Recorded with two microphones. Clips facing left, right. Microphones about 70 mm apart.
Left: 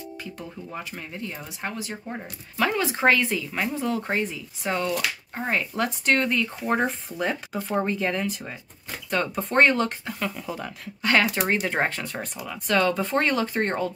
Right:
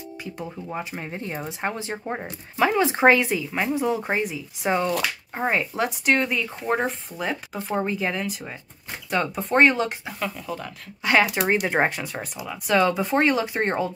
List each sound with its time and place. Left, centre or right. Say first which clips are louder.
0.2 s speech: right 3 dB; centre
1.0 s speech: right 4 dB; right
2.5 s speech: right 4 dB; centre
11.0 s speech: right 2 dB; centre